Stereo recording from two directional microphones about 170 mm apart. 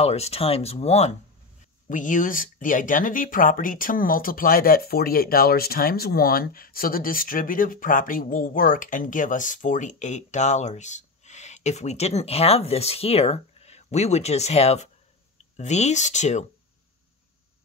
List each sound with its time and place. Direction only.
0.0 s speech: 35° left (ahead or behind)
1.9 s speech: 50° left (ahead or behind)